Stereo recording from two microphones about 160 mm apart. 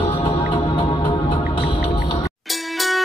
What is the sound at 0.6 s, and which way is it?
Music, 35° left (ahead or behind).